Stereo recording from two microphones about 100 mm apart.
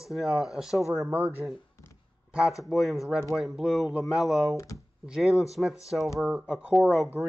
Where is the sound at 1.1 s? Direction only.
20° right (ahead or behind).